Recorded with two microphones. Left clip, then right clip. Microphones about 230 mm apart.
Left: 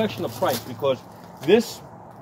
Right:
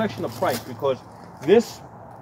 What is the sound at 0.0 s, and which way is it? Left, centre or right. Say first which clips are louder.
Speech: even; centre.